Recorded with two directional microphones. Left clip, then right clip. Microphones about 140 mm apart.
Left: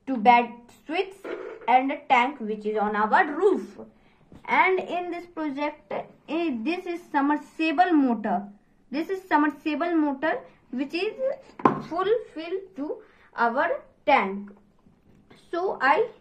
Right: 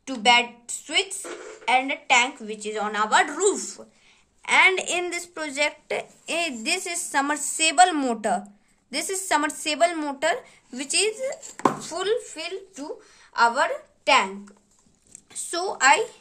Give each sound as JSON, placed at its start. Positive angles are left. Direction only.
{"t": 0.0, "sound": "a woman's voice", "side_deg": -5}
{"t": 2.7, "sound": "a woman's voice", "side_deg": -20}
{"t": 3.2, "sound": "a woman's voice", "side_deg": -35}
{"t": 4.4, "sound": "a woman's voice", "side_deg": -15}
{"t": 4.8, "sound": "a woman's voice", "side_deg": -35}
{"t": 5.3, "sound": "a woman's voice", "side_deg": -65}
{"t": 11.8, "sound": "a woman's voice", "side_deg": -20}
{"t": 15.5, "sound": "speech", "side_deg": -15}